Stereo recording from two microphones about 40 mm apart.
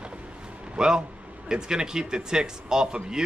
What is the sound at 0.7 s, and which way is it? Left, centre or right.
Speech, centre.